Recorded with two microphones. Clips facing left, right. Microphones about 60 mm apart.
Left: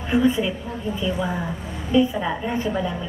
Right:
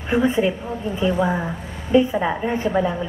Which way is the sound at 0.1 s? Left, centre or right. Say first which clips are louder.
Right 1 dB; right.